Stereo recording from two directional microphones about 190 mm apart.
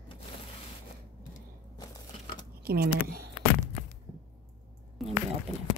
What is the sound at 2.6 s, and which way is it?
Speech, 55° right (ahead or behind).